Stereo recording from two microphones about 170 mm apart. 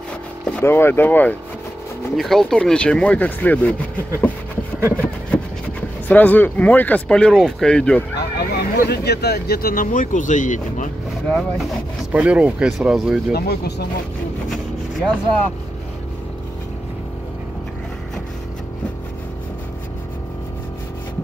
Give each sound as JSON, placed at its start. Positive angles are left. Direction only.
{"t": 0.5, "sound": "speech", "side_deg": 10}
{"t": 4.7, "sound": "a sound", "side_deg": -15}
{"t": 6.0, "sound": "speech", "side_deg": 10}
{"t": 8.2, "sound": "speech", "side_deg": 70}
{"t": 11.2, "sound": "speech", "side_deg": 0}
{"t": 13.3, "sound": "speech", "side_deg": 70}
{"t": 14.5, "sound": "vehicle", "side_deg": 5}